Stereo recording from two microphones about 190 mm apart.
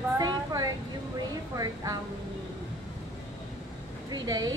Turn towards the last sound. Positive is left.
turn(degrees=-20)  # may be behind; listen again after turning